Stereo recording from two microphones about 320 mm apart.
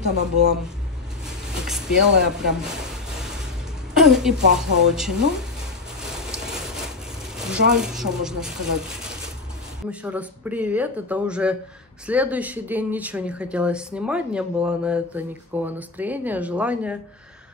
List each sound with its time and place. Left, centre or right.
0.1 s speech: right
1.5 s vehicle: centre
2.2 s a sound: centre
3.9 s speech: centre
6.3 s a sound: centre
7.7 s speech: centre